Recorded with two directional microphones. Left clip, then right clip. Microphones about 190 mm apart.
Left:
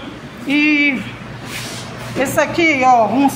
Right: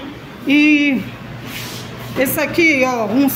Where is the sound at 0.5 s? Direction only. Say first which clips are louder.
Right 1 dB; 35° right (ahead or behind).